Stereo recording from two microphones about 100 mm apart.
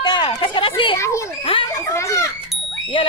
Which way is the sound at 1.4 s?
60° left (ahead or behind).